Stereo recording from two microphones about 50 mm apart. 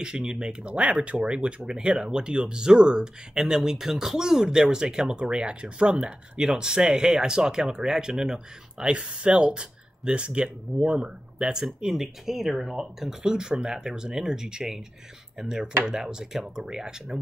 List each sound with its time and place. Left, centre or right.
0.0 s speech: centre